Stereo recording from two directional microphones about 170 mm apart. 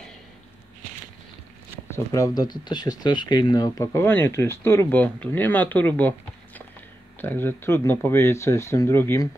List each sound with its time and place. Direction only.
1.9 s speech: 15° left (ahead or behind)